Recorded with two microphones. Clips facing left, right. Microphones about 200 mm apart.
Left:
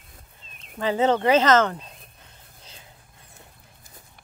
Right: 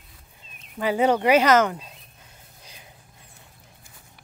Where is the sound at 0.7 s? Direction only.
10° right (ahead or behind).